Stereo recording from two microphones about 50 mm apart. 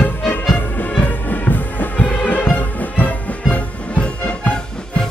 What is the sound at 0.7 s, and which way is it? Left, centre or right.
Music, left.